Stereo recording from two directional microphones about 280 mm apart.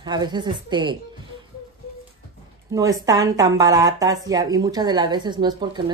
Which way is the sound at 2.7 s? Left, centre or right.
Centre.